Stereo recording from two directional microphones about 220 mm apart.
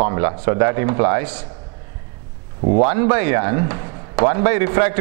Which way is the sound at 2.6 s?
35° right (ahead or behind).